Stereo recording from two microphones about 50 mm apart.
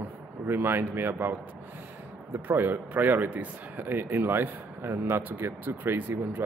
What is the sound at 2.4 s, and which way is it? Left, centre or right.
Speech, right.